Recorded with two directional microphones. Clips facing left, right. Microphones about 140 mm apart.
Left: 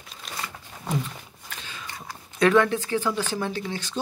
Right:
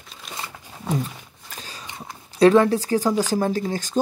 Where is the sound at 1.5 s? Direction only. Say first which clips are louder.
Right 2 dB; 40° right (ahead or behind).